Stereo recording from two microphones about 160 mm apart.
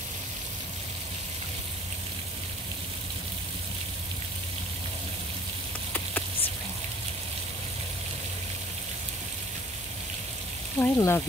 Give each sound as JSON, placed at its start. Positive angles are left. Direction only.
{"t": 10.8, "sound": "speech", "side_deg": 15}